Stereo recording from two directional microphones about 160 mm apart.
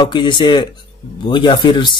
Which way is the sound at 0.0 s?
30° left (ahead or behind).